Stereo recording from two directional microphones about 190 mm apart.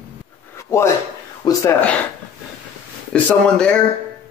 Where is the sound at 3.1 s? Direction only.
5° left (ahead or behind).